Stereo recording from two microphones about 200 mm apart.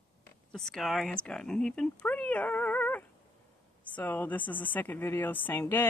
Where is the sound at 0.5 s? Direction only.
Centre (ahead or behind).